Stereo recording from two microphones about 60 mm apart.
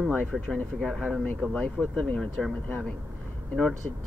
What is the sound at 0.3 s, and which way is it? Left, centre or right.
Speech, centre.